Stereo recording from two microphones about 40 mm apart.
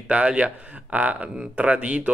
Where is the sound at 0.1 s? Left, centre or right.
Right.